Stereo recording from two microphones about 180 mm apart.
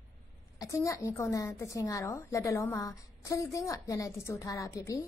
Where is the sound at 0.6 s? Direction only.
15° left (ahead or behind).